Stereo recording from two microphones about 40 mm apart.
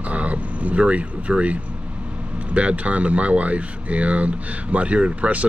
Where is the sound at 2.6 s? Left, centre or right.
Right.